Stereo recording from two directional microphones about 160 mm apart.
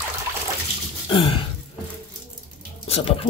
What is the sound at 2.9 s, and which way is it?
Speech, 35° left (ahead or behind).